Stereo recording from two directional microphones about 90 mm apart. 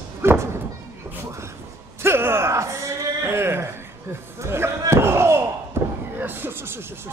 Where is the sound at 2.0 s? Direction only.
25° right (ahead or behind).